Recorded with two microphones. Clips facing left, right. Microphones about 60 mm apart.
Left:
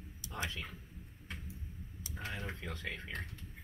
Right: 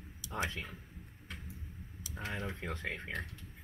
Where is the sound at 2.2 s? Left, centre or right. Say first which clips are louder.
Right 3 dB; right.